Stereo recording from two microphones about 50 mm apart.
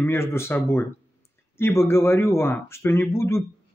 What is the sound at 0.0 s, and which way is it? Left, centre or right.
A man's voice, left.